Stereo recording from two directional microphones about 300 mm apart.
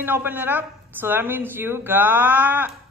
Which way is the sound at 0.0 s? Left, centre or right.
Centre.